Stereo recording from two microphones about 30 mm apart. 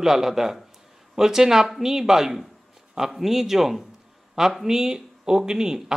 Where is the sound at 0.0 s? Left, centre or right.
Centre.